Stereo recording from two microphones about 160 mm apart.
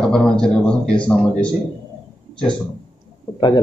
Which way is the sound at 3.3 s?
25° left (ahead or behind).